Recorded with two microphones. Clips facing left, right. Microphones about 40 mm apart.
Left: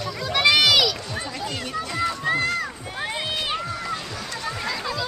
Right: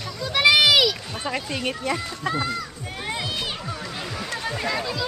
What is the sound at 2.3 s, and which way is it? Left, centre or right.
Speech, left.